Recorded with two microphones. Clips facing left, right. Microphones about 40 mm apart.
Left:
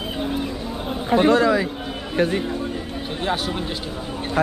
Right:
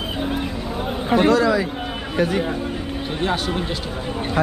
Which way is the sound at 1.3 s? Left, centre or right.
Left.